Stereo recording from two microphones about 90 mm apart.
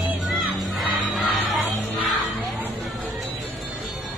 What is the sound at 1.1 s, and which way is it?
Music, centre (ahead or behind).